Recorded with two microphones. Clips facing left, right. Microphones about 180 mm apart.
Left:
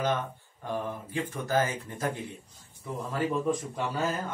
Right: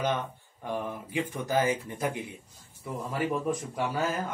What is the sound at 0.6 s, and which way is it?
Speech, 15° right (ahead or behind).